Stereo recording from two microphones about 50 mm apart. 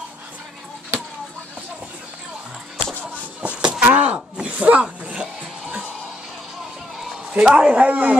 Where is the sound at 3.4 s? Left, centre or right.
Right.